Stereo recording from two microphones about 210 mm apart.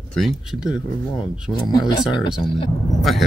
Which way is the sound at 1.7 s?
20° left (ahead or behind).